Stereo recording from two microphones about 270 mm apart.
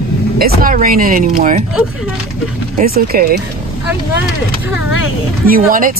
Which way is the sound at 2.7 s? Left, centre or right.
Right.